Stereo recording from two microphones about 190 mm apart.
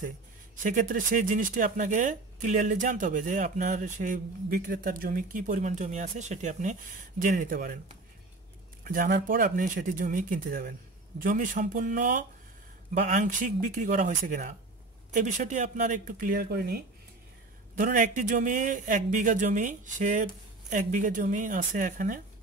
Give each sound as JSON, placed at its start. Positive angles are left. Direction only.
{"t": 0.6, "sound": "speech", "side_deg": -45}
{"t": 8.8, "sound": "speech", "side_deg": -45}
{"t": 17.7, "sound": "speech", "side_deg": -45}